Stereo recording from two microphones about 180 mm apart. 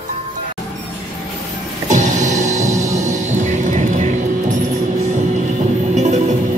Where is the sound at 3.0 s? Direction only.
45° right (ahead or behind).